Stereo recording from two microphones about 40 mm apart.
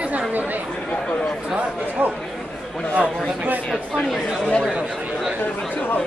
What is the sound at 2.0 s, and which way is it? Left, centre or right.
Speech, right.